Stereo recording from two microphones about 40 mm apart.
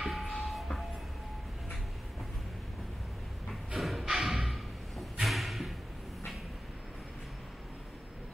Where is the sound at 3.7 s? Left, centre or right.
Centre.